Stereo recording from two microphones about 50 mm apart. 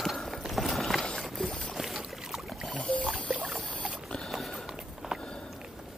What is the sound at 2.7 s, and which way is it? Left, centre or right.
Boat, left.